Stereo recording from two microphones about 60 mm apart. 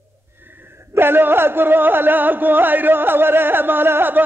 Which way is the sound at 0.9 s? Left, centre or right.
Right.